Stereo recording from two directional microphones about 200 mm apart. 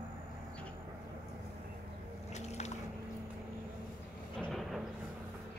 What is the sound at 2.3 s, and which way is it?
Boat, 35° left (ahead or behind).